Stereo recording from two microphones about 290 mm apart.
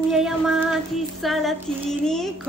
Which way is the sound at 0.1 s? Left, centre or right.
Centre.